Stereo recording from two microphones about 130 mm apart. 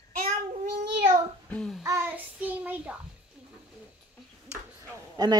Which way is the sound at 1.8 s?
25° right (ahead or behind).